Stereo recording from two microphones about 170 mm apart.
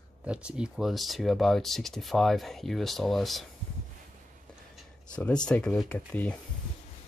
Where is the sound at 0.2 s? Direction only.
5° right (ahead or behind).